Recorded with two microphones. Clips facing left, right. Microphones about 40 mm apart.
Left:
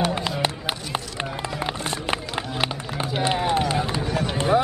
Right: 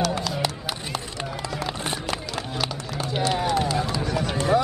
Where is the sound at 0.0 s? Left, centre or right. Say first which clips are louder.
Left 1 dB; left.